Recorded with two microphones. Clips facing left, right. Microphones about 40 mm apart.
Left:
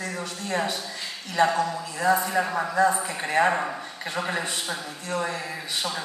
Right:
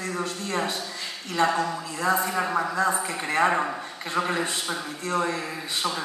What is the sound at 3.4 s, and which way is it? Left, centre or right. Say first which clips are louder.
Speech: right 3 dB; centre.